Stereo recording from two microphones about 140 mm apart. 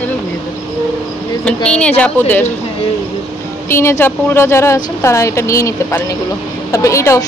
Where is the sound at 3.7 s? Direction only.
20° left (ahead or behind).